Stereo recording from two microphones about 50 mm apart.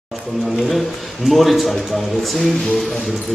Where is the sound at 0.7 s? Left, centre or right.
Centre.